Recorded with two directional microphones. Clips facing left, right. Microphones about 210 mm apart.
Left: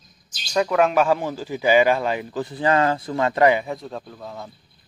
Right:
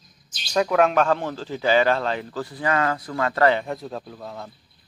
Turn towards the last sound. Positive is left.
turn(degrees=0)  # may be behind; listen again after turning